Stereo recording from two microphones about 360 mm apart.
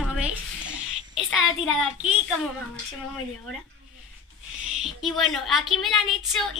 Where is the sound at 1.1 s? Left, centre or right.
Centre.